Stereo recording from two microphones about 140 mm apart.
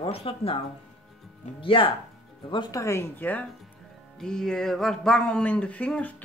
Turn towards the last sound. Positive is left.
turn(degrees=10)  # may be behind; listen again after turning